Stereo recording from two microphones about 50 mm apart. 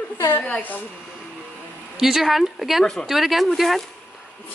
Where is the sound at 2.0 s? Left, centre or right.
Centre.